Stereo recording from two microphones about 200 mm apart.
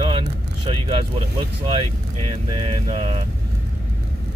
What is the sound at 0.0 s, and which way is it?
Vehicle, 25° right (ahead or behind).